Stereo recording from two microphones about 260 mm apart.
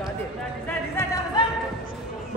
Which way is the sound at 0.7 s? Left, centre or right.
Centre.